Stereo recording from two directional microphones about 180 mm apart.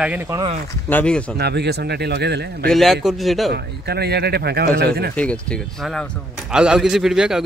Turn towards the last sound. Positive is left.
turn(degrees=-5)  # may be behind; listen again after turning